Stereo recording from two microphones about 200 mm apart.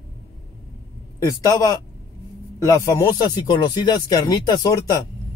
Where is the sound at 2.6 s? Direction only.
15° left (ahead or behind).